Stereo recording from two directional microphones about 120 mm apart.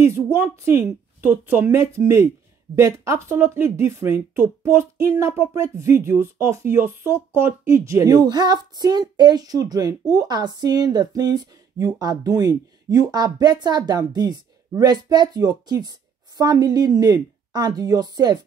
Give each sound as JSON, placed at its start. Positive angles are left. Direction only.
{"t": 0.0, "sound": "a woman's voice", "side_deg": -20}